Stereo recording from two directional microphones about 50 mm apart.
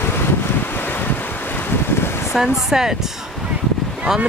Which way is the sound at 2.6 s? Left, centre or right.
Centre.